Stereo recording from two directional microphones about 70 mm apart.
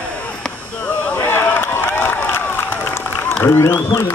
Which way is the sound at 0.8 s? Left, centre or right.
Left.